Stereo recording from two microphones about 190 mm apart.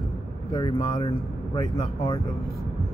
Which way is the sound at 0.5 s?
20° left (ahead or behind).